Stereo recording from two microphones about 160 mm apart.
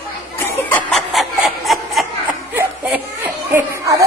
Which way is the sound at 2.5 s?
15° right (ahead or behind).